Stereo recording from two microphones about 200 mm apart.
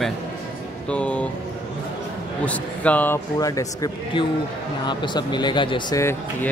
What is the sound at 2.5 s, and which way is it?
Speech, 5° left (ahead or behind).